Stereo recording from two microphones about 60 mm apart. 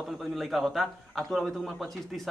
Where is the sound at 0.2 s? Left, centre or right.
Centre.